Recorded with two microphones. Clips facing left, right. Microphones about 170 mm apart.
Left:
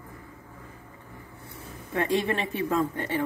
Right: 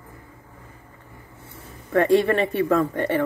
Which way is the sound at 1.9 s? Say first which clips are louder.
Right 8 dB; 55° right (ahead or behind).